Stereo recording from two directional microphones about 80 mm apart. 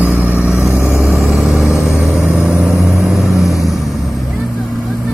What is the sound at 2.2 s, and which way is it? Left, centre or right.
Vehicle, centre.